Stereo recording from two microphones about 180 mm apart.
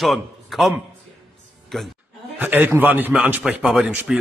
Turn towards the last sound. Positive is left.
turn(degrees=-10)  # may be behind; listen again after turning